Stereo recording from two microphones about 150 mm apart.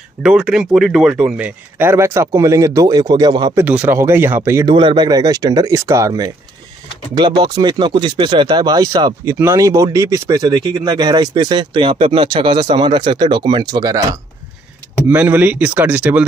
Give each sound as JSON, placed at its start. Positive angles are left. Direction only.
{"t": 0.2, "sound": "speech", "side_deg": -5}
{"t": 3.6, "sound": "speech", "side_deg": -10}
{"t": 4.6, "sound": "speech", "side_deg": -30}
{"t": 15.0, "sound": "speech", "side_deg": -10}